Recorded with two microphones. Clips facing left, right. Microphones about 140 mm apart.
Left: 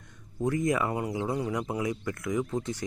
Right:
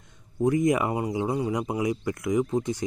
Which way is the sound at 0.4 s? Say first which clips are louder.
Right 5 dB; 15° right (ahead or behind).